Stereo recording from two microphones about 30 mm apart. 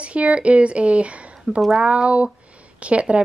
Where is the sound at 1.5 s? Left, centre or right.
Right.